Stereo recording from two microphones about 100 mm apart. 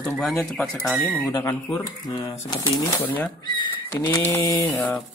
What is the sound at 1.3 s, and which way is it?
Speech, 25° left (ahead or behind).